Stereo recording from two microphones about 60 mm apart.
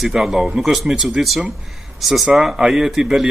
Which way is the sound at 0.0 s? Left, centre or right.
Centre.